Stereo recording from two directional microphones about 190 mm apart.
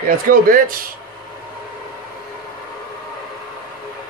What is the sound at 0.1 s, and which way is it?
Speech, 50° right (ahead or behind).